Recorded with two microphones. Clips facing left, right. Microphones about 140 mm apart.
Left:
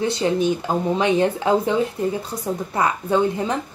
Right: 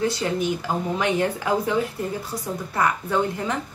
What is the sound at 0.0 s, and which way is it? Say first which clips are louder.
Speech: left 4 dB; 20° left (ahead or behind).